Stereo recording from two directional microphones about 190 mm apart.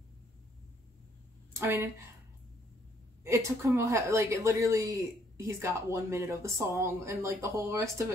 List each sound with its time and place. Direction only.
1.5 s a woman's voice: 10° right (ahead or behind)
3.3 s speech: 15° right (ahead or behind)